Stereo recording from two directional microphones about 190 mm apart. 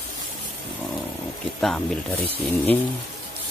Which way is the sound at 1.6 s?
5° left (ahead or behind).